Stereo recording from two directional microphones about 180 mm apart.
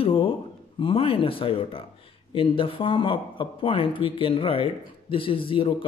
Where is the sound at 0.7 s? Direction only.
30° left (ahead or behind).